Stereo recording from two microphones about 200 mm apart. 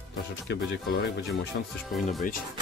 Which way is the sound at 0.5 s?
65° left (ahead or behind).